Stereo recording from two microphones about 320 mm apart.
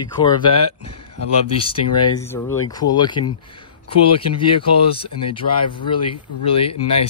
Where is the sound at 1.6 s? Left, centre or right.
Centre.